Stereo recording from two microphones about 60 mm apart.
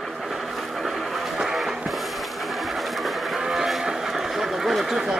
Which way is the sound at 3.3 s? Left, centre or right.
Centre.